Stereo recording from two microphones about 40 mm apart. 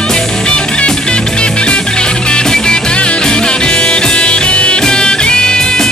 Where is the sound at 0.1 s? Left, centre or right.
Left.